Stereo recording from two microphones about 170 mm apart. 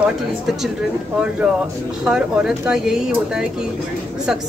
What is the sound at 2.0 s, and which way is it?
A woman's voice, 5° right (ahead or behind).